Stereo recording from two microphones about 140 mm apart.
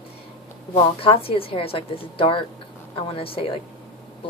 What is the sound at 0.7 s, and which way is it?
A woman's voice, 40° left (ahead or behind).